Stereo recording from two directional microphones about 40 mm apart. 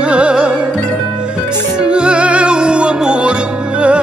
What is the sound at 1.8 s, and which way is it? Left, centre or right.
Music, right.